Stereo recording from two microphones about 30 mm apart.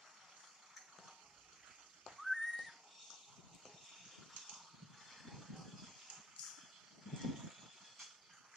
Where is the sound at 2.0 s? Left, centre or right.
Centre.